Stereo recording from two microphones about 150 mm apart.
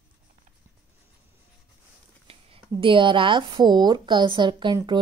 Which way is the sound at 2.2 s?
35° right (ahead or behind).